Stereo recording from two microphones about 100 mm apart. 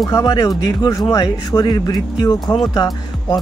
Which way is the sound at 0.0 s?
40° left (ahead or behind).